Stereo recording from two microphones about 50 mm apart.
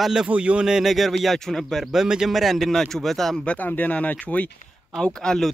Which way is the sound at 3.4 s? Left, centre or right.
Left.